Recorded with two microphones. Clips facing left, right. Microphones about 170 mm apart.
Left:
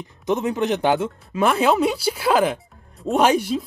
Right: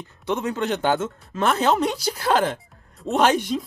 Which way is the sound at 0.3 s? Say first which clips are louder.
Left 3 dB; 15° left (ahead or behind).